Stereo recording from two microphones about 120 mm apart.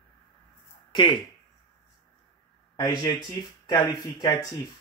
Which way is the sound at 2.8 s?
35° left (ahead or behind).